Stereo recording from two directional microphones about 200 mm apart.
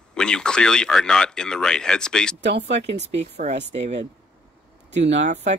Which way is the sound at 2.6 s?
35° right (ahead or behind).